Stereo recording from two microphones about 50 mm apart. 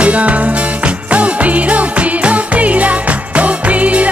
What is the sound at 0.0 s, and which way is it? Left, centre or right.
Music, right.